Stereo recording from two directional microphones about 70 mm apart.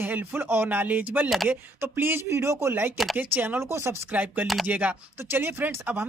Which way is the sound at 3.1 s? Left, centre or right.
Right.